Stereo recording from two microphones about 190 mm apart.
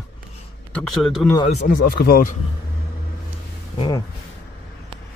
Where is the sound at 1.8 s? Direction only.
55° left (ahead or behind).